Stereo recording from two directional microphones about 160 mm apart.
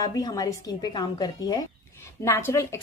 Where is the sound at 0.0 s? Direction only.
20° left (ahead or behind).